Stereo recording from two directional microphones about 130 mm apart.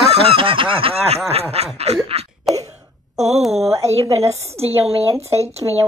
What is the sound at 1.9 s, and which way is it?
Cough, 55° right (ahead or behind).